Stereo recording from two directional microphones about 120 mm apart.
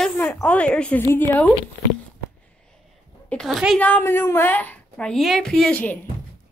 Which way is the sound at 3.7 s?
15° left (ahead or behind).